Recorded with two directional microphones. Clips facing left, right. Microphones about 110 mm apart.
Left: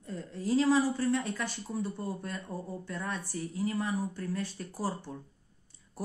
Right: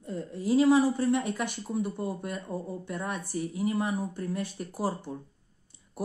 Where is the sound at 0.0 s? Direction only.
15° right (ahead or behind).